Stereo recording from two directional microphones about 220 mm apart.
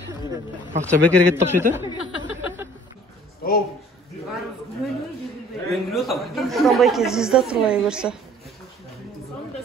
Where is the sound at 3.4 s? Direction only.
40° left (ahead or behind).